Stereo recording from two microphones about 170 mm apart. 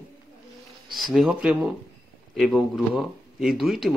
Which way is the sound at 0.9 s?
Centre (ahead or behind).